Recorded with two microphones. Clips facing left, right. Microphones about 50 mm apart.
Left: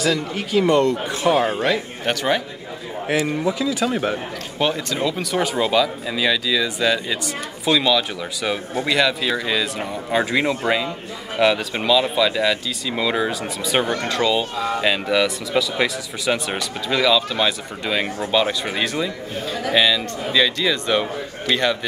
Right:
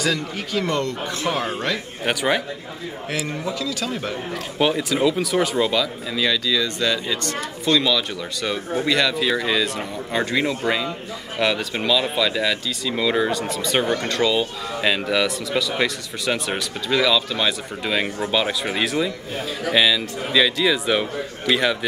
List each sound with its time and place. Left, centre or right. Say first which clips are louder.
0.0 s speech: left 2 dB; centre
2.0 s speech: even; centre
3.3 s speech: left 5 dB; left
4.6 s speech: right 2 dB; centre